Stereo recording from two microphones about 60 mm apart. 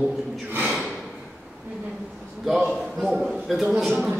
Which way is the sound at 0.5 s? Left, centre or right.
Right.